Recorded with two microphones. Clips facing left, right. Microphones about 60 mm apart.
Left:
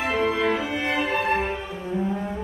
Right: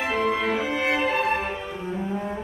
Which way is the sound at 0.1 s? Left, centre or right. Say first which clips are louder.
Left 2 dB; centre.